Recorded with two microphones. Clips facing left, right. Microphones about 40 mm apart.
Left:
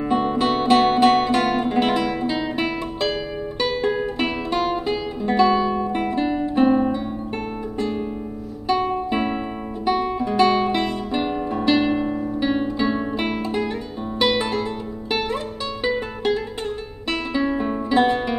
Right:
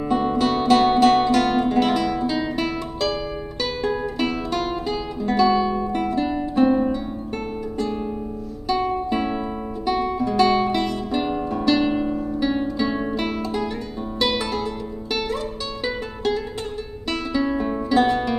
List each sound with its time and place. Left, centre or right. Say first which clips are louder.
0.1 s music: even; centre
8.6 s guitar: left 1 dB; left
11.3 s music: left 1 dB; left
17.1 s music: left 1 dB; left